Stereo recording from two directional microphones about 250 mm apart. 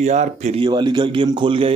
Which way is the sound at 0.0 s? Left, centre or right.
Right.